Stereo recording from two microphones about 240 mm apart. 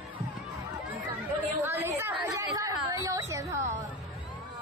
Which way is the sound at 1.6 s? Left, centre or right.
Centre.